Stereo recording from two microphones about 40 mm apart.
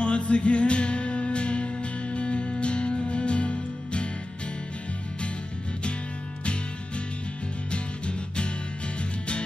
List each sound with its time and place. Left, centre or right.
0.0 s music: left
7.7 s music: left